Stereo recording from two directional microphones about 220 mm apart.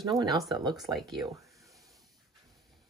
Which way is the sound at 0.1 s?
Centre (ahead or behind).